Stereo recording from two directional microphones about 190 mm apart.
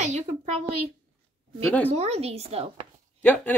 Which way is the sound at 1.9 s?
35° right (ahead or behind).